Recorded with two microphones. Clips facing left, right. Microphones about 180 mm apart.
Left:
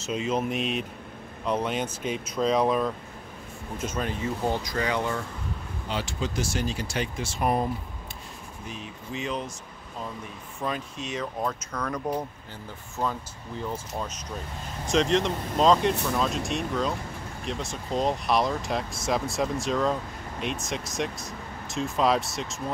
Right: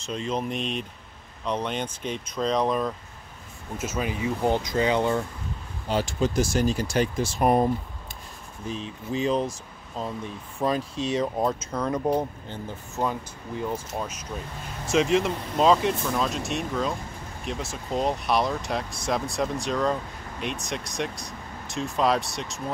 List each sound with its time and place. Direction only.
0.0 s speech: 5° left (ahead or behind)
3.7 s speech: 5° right (ahead or behind)
4.5 s speech: 20° right (ahead or behind)
5.9 s speech: 45° right (ahead or behind)
10.6 s speech: 35° right (ahead or behind)
13.7 s speech: 10° right (ahead or behind)